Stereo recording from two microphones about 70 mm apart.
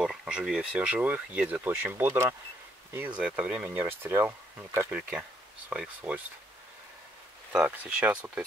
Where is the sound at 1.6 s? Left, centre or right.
Right.